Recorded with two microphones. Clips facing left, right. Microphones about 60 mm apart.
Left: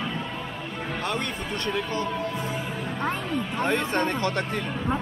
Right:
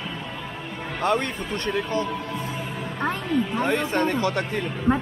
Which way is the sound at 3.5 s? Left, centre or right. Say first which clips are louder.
Left 2 dB; centre.